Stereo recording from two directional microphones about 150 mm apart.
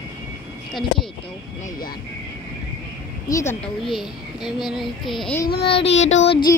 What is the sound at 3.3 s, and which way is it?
Speech, 15° left (ahead or behind).